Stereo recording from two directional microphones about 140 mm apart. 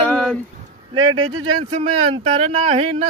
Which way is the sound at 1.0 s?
35° right (ahead or behind).